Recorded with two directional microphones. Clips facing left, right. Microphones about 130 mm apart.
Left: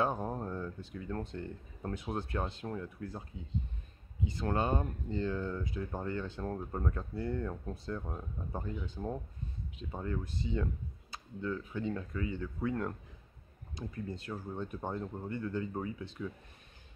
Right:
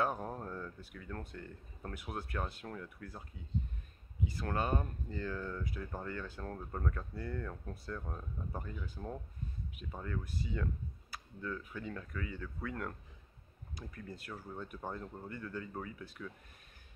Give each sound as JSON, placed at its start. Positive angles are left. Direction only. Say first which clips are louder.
{"t": 0.0, "sound": "speech", "louder": "left 3 dB", "side_deg": 20}